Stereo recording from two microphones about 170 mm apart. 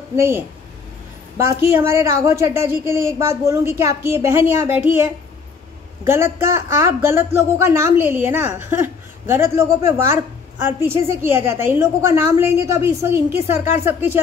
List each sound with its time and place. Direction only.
0.1 s speech: 15° right (ahead or behind)
1.4 s speech: 15° right (ahead or behind)